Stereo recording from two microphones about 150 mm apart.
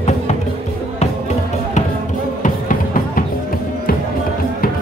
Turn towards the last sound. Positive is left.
turn(degrees=60)  # may be behind; listen again after turning